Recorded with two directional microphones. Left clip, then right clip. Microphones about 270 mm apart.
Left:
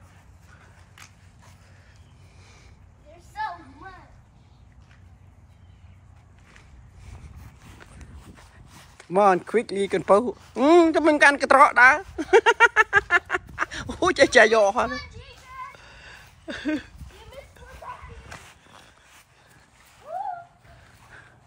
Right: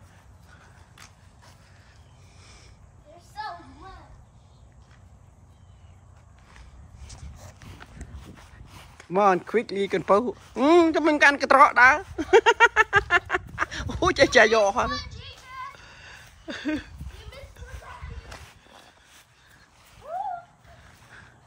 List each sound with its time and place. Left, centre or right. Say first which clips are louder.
8.2 s speech: right 1 dB; centre
14.9 s children playing: right 2 dB; left
15.7 s a sound: even; centre